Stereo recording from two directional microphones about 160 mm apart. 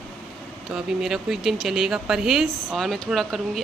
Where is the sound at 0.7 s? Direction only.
5° right (ahead or behind).